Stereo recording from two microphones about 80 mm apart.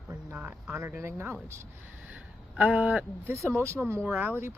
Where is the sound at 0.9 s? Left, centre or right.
Right.